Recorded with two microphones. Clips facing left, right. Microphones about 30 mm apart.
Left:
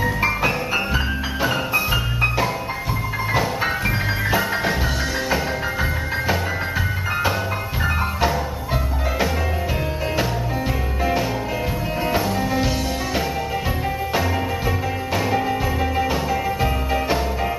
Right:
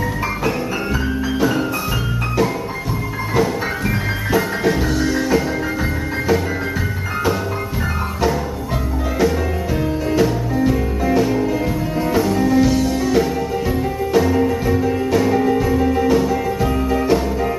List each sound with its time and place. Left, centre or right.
3.3 s music: centre
10.1 s music: centre